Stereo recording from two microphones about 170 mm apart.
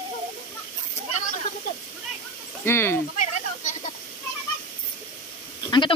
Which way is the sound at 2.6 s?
15° left (ahead or behind).